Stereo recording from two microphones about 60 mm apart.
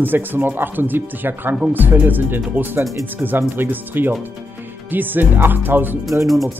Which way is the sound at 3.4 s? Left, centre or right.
Right.